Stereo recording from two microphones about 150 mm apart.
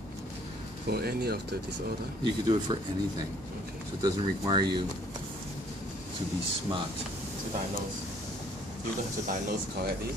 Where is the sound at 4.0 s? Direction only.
30° right (ahead or behind).